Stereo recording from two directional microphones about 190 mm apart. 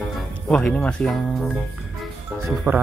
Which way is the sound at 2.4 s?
10° right (ahead or behind).